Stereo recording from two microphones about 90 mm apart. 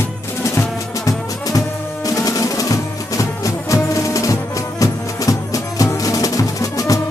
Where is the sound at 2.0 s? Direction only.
40° left (ahead or behind).